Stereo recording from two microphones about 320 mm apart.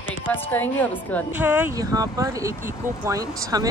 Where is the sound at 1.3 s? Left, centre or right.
Centre.